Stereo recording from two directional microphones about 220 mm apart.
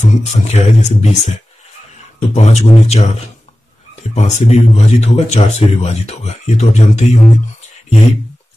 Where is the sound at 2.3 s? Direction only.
30° left (ahead or behind).